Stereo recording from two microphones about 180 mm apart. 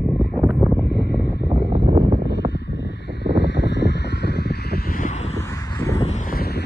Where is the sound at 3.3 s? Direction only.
75° left (ahead or behind); by 5.3 s 40° left (ahead or behind).